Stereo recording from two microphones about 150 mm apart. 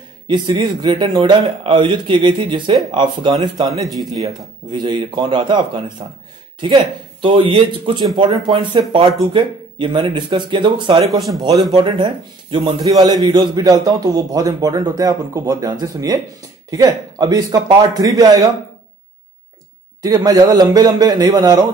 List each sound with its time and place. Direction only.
0.3 s a man's voice: 30° right (ahead or behind)
11.1 s speech: centre (ahead or behind)
11.7 s a man's voice: 35° right (ahead or behind)
20.0 s a man's voice: 25° right (ahead or behind)